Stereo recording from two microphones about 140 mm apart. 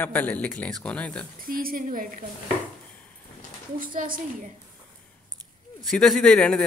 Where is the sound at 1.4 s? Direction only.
90° right; by 2.2 s 70° right (ahead or behind).